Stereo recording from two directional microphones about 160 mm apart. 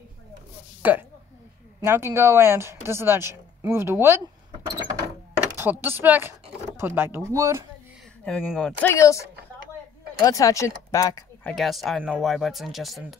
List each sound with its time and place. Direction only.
0.8 s speech: 10° right (ahead or behind)
4.5 s a sound: 30° right (ahead or behind)
5.6 s speech: 15° right (ahead or behind)
8.3 s speech: centre (ahead or behind)
8.8 s speech: 20° left (ahead or behind)
11.4 s speech: centre (ahead or behind)